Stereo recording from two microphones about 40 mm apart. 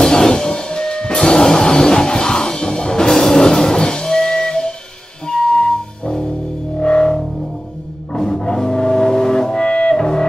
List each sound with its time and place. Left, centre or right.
0.0 s music: centre